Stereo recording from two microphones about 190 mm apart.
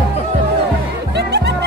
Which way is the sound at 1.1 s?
60° right (ahead or behind).